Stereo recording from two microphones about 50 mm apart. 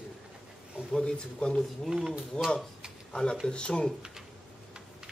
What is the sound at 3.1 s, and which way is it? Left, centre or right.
Speech, centre.